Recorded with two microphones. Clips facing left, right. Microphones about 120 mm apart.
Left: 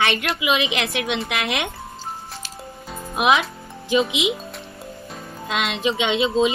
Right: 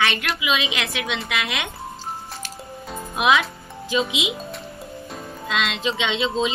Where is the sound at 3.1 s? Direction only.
20° left (ahead or behind).